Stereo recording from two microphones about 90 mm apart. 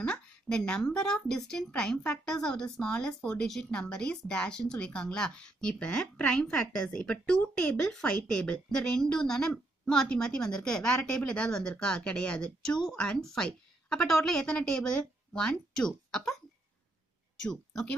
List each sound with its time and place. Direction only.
0.0 s speech: 10° left (ahead or behind)
17.4 s speech: 10° left (ahead or behind)